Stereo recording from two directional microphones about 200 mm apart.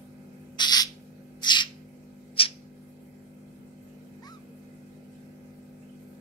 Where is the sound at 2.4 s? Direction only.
25° left (ahead or behind).